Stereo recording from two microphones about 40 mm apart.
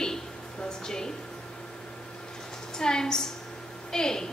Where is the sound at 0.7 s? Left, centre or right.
Centre.